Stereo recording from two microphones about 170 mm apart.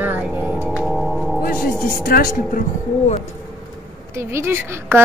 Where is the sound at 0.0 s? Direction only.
10° right (ahead or behind).